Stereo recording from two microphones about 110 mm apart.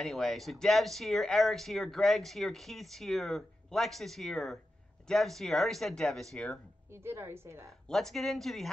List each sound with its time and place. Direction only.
0.0 s speech: centre (ahead or behind)
6.9 s a woman's voice: 25° right (ahead or behind)
7.9 s speech: 5° left (ahead or behind)